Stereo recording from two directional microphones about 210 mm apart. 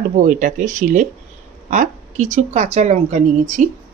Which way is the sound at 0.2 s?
35° right (ahead or behind).